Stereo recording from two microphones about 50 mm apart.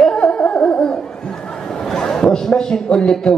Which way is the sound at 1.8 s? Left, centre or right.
Centre.